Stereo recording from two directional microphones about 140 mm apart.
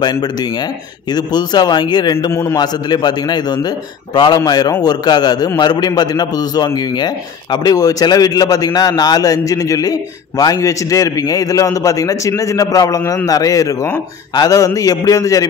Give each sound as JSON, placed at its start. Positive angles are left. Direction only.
{"t": 1.1, "sound": "a man's voice", "side_deg": 30}